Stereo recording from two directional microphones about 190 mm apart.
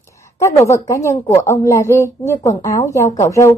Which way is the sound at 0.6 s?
15° left (ahead or behind).